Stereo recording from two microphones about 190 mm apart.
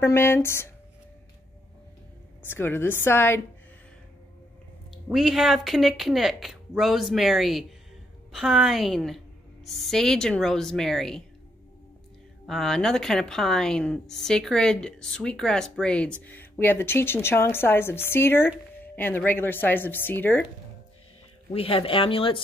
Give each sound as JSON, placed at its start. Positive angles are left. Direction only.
{"t": 0.0, "sound": "a woman's voice", "side_deg": 15}
{"t": 2.4, "sound": "a woman's voice", "side_deg": 10}
{"t": 4.9, "sound": "a woman's voice", "side_deg": 0}
{"t": 12.4, "sound": "a woman's voice", "side_deg": 0}
{"t": 21.5, "sound": "speech", "side_deg": 30}